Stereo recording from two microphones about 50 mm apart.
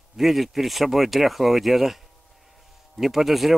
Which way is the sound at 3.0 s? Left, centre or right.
Centre.